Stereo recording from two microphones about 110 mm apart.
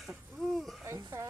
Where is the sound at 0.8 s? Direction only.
25° right (ahead or behind).